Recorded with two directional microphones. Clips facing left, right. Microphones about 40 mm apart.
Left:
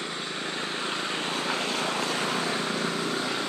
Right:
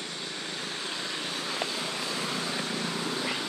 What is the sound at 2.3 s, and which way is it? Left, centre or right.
Vehicle, left.